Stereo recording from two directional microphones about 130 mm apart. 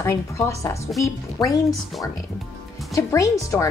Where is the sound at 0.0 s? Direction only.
20° left (ahead or behind).